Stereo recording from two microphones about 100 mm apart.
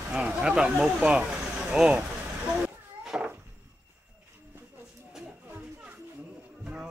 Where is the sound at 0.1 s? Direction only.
10° right (ahead or behind).